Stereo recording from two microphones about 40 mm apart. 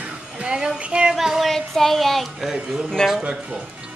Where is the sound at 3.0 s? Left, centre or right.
Centre.